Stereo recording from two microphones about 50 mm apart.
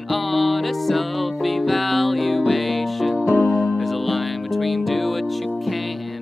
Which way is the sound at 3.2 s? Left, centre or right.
Centre.